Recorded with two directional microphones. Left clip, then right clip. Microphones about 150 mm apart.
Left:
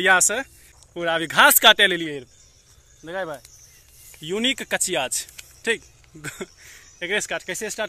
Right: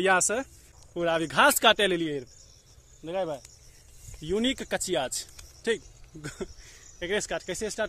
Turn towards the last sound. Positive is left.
turn(degrees=5)  # may be behind; listen again after turning